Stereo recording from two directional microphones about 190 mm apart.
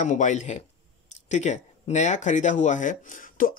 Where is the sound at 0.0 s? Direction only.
40° left (ahead or behind).